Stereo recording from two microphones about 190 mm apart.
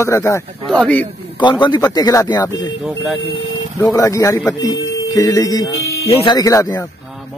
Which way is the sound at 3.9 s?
15° left (ahead or behind).